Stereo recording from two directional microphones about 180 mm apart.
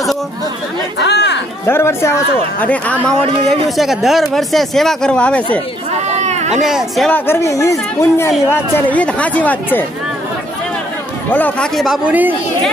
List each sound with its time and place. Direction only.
0.9 s chatter: 70° left (ahead or behind)
1.7 s speech: 15° left (ahead or behind)
5.9 s a sound: 40° right (ahead or behind)
6.6 s speech: centre (ahead or behind)
7.1 s speech: 10° left (ahead or behind)
11.3 s speech: 5° left (ahead or behind); by 12.4 s 10° right (ahead or behind)